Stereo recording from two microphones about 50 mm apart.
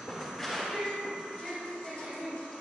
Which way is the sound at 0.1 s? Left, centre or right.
Centre.